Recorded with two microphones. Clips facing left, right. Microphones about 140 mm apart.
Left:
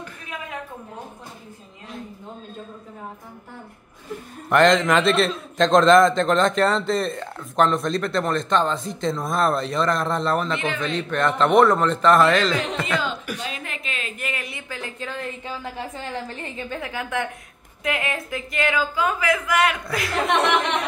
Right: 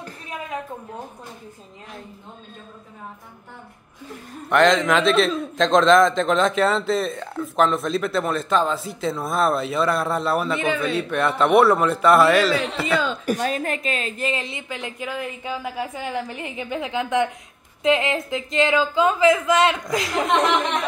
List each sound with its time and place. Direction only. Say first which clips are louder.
4.5 s a man's voice: even; centre (ahead or behind)
13.2 s a woman's voice: right 8 dB; 40° right (ahead or behind); by 20.2 s 15° right (ahead or behind)